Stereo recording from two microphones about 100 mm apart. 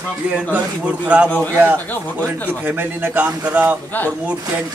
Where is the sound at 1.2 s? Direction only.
15° left (ahead or behind).